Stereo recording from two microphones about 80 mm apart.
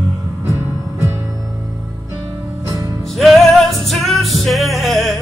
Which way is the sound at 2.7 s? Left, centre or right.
Right.